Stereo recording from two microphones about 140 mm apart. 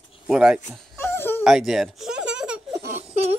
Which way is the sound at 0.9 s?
15° left (ahead or behind).